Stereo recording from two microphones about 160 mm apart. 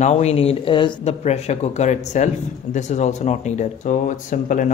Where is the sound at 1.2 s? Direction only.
40° left (ahead or behind).